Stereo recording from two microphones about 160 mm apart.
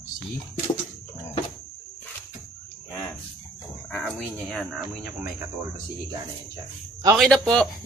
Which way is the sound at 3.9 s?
5° left (ahead or behind).